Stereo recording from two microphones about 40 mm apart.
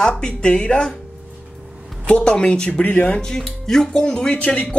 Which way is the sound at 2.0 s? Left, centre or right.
Left.